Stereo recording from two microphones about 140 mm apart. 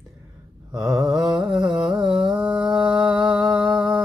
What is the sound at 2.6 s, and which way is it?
Mantra, 35° right (ahead or behind).